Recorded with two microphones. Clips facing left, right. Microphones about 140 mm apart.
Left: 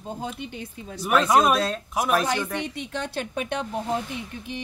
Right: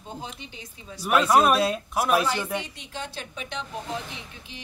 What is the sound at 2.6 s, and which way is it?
Speech, 60° left (ahead or behind).